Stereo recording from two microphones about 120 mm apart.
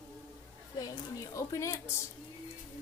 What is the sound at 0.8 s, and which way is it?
A woman's voice, 25° left (ahead or behind).